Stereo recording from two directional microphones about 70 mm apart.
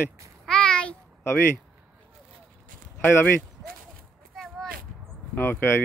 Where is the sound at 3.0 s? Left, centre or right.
Left.